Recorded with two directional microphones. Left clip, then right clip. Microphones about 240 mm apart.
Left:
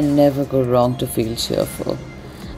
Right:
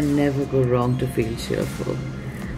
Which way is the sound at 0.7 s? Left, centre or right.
Left.